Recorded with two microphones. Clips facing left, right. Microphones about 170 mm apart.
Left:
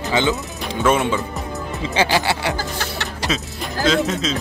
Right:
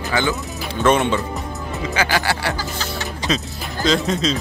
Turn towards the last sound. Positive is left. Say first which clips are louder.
# even
turn(degrees=5)  # may be behind; listen again after turning